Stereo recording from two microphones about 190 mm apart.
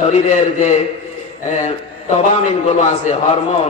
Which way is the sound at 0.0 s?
35° left (ahead or behind).